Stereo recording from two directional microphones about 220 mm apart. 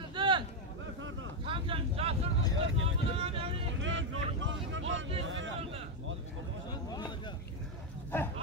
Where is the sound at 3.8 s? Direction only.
60° right (ahead or behind).